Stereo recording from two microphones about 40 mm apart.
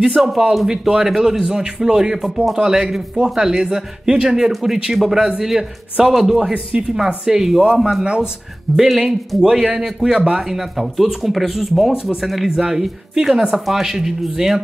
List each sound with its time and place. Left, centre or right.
0.0 s speech: centre
6.7 s a man's voice: right
7.2 s speech: centre
8.0 s a man's voice: right
8.7 s speech: centre
9.4 s a man's voice: centre
9.8 s speech: centre